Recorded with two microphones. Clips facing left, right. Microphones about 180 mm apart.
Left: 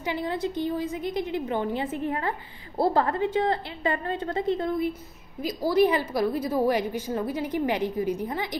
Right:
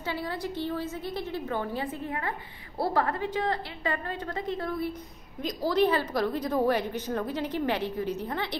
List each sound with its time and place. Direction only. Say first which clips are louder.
0.0 s a woman's voice: left 4 dB; 20° left (ahead or behind)
5.4 s a woman's voice: left 3 dB; 10° left (ahead or behind)